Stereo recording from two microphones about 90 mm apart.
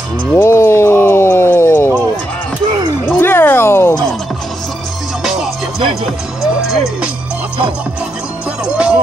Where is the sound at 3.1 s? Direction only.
25° left (ahead or behind).